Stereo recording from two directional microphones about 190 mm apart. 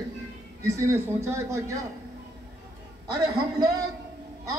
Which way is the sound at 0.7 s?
15° right (ahead or behind).